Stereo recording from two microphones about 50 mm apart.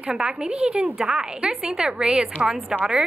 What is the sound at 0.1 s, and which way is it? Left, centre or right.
A woman's voice, centre.